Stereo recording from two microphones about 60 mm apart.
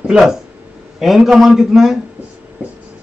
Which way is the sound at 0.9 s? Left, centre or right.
Centre.